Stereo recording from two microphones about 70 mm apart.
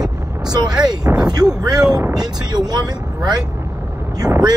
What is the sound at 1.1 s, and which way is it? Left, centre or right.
Speech, right.